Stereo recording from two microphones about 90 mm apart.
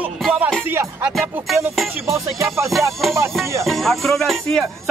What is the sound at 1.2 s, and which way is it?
Speech, centre (ahead or behind).